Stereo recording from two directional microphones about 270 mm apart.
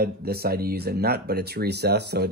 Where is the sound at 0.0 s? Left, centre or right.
Right.